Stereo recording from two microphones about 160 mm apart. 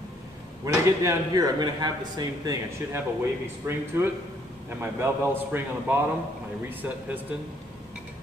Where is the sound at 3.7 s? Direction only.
15° right (ahead or behind).